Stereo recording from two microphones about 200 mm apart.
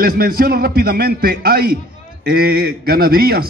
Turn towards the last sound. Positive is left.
turn(degrees=-50)  # may be behind; listen again after turning